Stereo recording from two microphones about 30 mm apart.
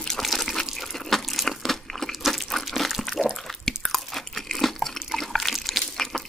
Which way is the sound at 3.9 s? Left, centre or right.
Centre.